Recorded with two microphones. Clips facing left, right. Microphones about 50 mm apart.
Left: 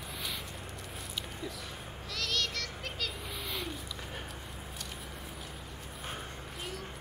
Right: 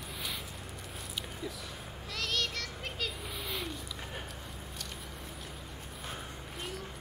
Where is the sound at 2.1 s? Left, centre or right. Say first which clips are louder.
Even; centre.